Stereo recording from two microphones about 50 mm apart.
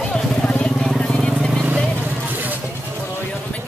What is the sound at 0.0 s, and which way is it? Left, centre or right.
Vehicle, centre.